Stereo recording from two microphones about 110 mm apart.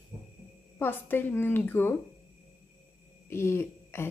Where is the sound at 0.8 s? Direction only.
20° left (ahead or behind).